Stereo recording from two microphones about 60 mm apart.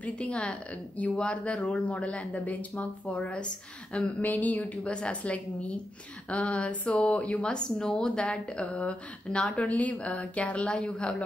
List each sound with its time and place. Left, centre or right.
0.0 s speech: left